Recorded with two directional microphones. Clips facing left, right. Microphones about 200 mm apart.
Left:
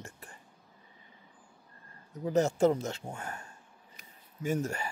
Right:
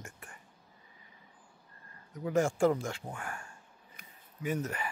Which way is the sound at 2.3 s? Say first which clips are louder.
Left 2 dB; 20° left (ahead or behind).